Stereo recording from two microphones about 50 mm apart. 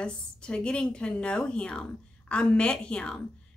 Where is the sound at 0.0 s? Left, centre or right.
Centre.